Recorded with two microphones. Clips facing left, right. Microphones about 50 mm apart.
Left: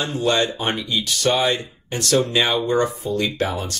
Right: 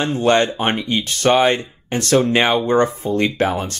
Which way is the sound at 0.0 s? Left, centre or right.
Right.